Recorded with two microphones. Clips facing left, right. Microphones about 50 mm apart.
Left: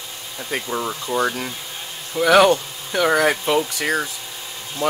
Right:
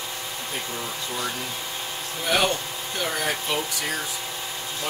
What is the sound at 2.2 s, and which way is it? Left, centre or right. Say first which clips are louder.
Speech: left 10 dB; left.